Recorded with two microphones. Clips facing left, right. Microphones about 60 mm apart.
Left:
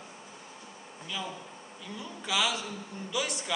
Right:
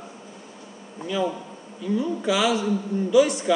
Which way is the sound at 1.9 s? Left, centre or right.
Centre.